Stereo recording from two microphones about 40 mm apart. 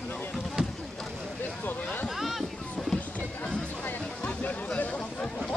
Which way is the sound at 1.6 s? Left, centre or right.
Left.